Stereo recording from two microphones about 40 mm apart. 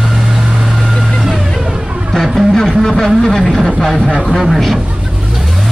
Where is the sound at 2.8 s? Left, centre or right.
Centre.